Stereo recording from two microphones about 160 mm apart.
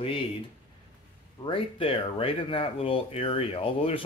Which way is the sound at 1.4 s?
35° left (ahead or behind).